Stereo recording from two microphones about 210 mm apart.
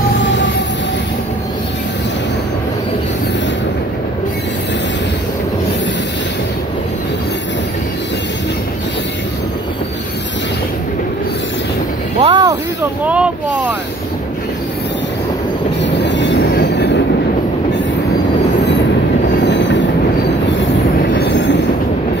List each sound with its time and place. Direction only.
12.2 s a sound: 25° right (ahead or behind)
13.0 s speech: 5° right (ahead or behind)
15.8 s train: 55° left (ahead or behind)
19.4 s train: 60° left (ahead or behind)
21.3 s train: 55° left (ahead or behind)